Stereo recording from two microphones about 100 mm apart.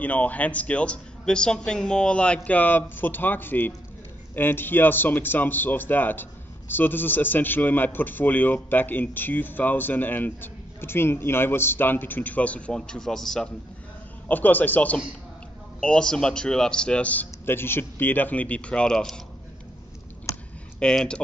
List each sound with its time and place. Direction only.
0.0 s speech: 15° left (ahead or behind)
14.2 s speech: 20° left (ahead or behind)
20.3 s a sound: 30° left (ahead or behind)
20.8 s speech: 10° left (ahead or behind)